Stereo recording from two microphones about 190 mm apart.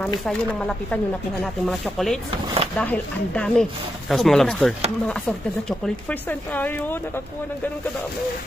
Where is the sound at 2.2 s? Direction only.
30° right (ahead or behind).